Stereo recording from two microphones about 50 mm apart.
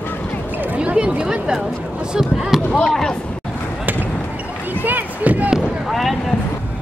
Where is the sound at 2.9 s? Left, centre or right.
Centre.